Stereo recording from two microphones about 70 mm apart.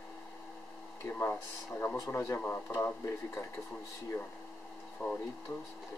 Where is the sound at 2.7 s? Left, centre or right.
Left.